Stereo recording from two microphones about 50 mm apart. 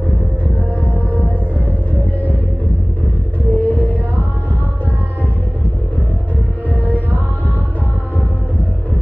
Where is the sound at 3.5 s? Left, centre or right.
Right.